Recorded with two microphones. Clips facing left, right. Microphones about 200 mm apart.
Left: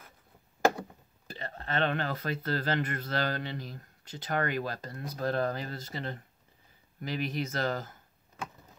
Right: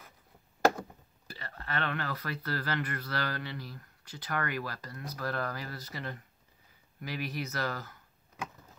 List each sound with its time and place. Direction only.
1.2 s speech: 25° left (ahead or behind)